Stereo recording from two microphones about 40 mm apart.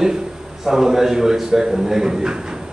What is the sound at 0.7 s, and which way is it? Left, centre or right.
A man's voice, centre.